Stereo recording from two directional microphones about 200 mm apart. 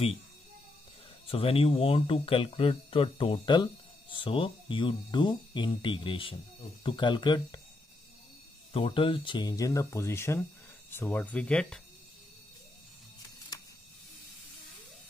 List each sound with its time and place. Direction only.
1.2 s speech: 30° left (ahead or behind)
8.7 s speech: 25° left (ahead or behind); by 11.8 s 5° left (ahead or behind)